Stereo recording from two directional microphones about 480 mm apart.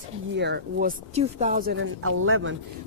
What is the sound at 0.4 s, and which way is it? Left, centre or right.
Speech, centre.